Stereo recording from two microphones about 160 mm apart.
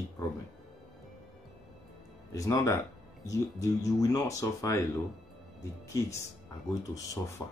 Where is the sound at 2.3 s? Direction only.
20° left (ahead or behind).